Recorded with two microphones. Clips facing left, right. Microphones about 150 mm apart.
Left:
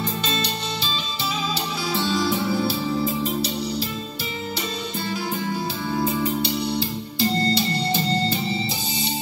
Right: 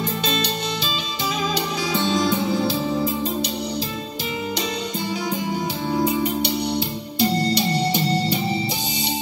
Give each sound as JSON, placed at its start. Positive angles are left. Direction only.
{"t": 2.0, "sound": "music", "side_deg": -20}
{"t": 6.8, "sound": "music", "side_deg": -15}